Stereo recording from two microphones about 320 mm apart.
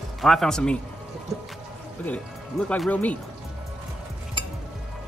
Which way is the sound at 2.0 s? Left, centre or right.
Centre.